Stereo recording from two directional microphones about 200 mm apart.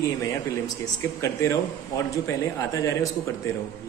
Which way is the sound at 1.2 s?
15° left (ahead or behind).